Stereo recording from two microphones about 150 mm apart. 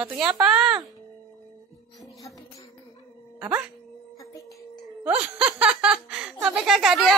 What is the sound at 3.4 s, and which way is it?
Speech, 10° right (ahead or behind).